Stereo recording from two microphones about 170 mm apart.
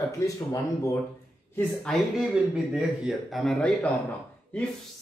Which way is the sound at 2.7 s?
Centre (ahead or behind).